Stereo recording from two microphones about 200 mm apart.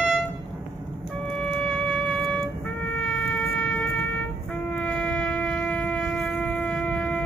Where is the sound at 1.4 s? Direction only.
5° left (ahead or behind).